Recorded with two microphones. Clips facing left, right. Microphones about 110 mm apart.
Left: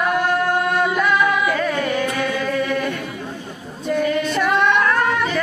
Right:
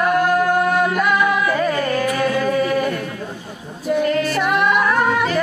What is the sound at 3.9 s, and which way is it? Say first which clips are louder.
Female singing: right 2 dB; 5° right (ahead or behind).